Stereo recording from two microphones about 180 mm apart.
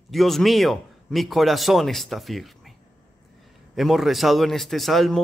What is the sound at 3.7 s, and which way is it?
A man's voice, centre (ahead or behind).